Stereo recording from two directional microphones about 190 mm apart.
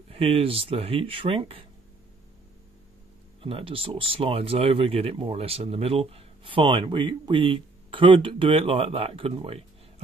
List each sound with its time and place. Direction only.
0.1 s speech: 30° right (ahead or behind)
3.4 s speech: 30° right (ahead or behind)